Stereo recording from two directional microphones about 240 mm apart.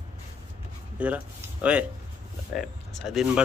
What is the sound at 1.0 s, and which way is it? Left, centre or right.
Speech, centre.